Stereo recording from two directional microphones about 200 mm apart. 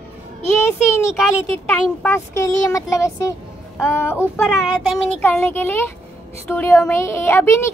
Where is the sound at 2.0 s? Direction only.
15° left (ahead or behind).